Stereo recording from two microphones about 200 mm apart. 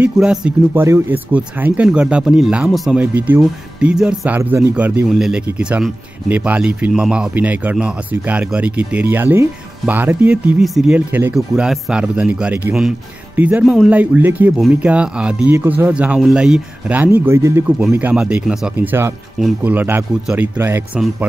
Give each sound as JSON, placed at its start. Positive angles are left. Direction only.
{"t": 0.0, "sound": "speech", "side_deg": -5}